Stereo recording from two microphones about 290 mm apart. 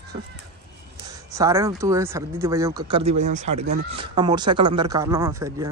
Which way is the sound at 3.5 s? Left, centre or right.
Right.